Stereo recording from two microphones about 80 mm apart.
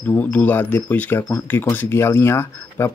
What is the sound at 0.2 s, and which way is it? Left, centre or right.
Speech, left.